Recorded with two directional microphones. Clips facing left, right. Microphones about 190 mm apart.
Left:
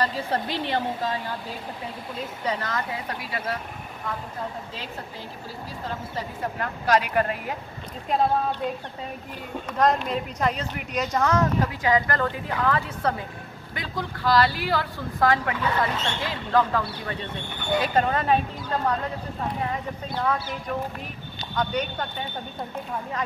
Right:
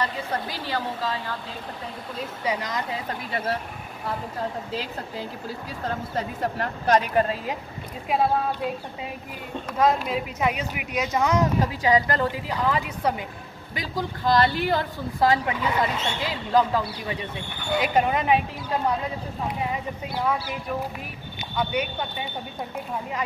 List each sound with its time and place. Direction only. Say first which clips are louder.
0.5 s a woman's voice: left 3 dB; 25° left (ahead or behind)
2.4 s speech: right 1 dB; 15° right (ahead or behind)
7.2 s speech: right 2 dB; 25° right (ahead or behind)
8.1 s speech: even; 5° right (ahead or behind)
9.8 s speech: even; 5° right (ahead or behind)